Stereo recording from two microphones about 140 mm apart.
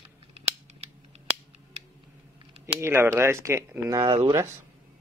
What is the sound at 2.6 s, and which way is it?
Speech, 20° right (ahead or behind).